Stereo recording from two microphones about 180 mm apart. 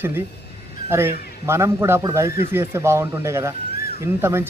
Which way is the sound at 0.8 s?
15° right (ahead or behind).